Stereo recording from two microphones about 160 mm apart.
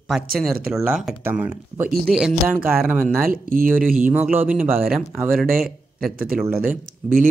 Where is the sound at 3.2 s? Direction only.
60° right (ahead or behind).